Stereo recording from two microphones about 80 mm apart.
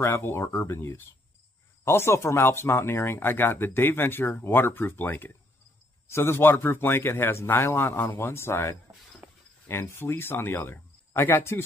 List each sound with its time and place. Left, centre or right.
0.0 s speech: left